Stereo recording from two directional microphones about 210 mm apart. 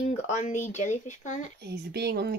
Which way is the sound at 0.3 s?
35° left (ahead or behind).